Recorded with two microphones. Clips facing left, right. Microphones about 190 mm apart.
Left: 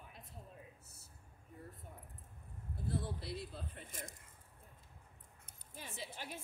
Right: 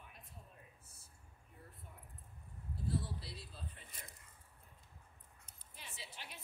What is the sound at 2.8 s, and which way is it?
Speech, 55° left (ahead or behind).